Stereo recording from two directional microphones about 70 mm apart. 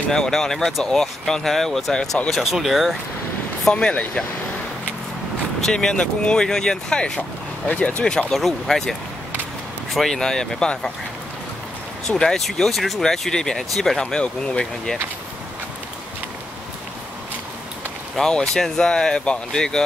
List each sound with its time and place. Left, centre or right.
0.1 s speech: centre
3.7 s speech: centre
5.6 s speech: centre
9.9 s speech: centre
12.1 s speech: centre
18.1 s speech: centre